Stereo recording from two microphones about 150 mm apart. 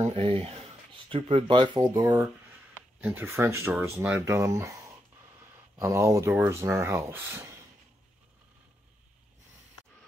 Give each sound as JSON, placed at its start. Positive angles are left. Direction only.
{"t": 0.0, "sound": "speech", "side_deg": -40}
{"t": 3.0, "sound": "speech", "side_deg": -15}
{"t": 5.8, "sound": "speech", "side_deg": -20}